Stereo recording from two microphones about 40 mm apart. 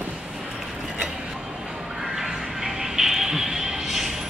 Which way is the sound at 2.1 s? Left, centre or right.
Centre.